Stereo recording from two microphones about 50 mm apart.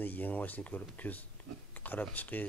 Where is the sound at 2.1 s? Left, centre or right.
Left.